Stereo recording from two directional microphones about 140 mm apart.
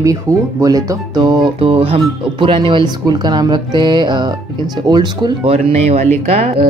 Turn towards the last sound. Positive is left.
turn(degrees=-50)  # may be behind; listen again after turning